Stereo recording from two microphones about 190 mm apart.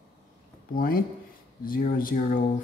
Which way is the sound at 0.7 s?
50° left (ahead or behind).